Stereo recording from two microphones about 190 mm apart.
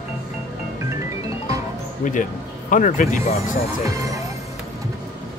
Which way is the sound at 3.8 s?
15° right (ahead or behind).